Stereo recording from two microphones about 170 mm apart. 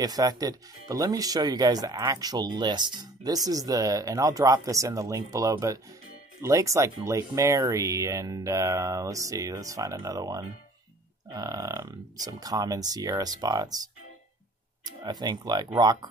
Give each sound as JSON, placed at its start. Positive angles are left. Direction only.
{"t": 0.0, "sound": "speech", "side_deg": -20}
{"t": 14.9, "sound": "speech", "side_deg": -25}